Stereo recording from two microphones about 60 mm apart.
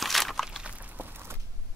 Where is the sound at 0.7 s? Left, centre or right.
Right.